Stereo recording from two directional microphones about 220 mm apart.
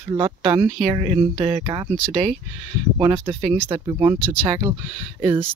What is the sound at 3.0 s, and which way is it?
Speech, 20° right (ahead or behind).